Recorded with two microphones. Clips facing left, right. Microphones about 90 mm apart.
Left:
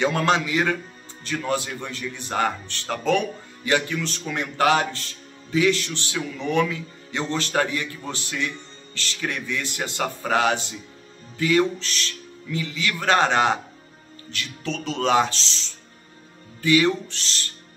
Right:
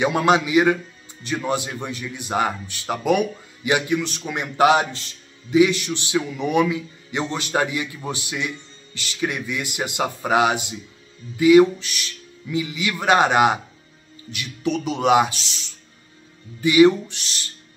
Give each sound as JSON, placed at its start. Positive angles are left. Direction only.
{"t": 0.0, "sound": "speech", "side_deg": -15}